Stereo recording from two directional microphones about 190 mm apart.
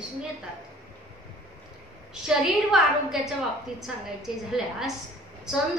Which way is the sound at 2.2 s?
Centre (ahead or behind).